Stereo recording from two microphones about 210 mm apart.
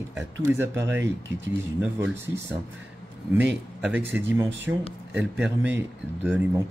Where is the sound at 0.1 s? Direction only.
10° right (ahead or behind).